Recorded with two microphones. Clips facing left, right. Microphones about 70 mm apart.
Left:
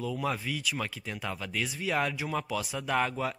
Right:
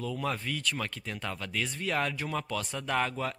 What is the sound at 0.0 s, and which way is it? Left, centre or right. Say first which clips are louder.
Speech: left 1 dB; centre.